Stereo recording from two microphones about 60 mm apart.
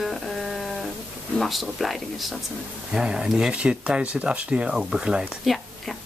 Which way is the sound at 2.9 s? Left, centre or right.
Centre.